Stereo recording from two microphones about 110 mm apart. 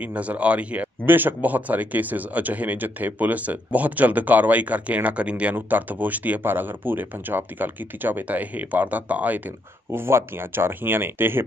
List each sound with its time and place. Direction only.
0.1 s speech: 10° right (ahead or behind)